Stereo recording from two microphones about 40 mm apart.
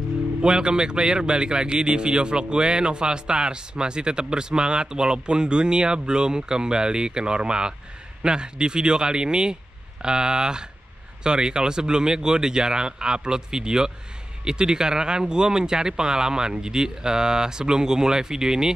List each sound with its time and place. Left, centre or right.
0.4 s speech: right